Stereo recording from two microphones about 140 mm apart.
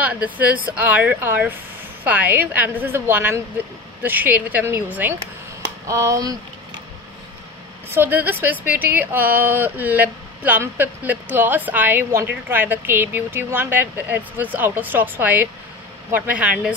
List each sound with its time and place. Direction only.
0.0 s speech: 10° right (ahead or behind)
5.9 s speech: 25° right (ahead or behind)
7.9 s speech: 15° right (ahead or behind)